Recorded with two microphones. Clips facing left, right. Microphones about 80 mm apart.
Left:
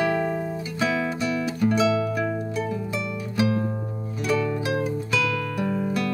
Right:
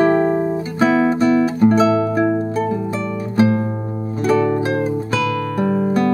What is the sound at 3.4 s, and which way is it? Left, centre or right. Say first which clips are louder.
Music: right 7 dB; right.